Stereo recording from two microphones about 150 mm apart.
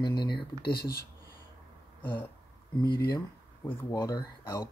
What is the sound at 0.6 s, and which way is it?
Speech, 90° left.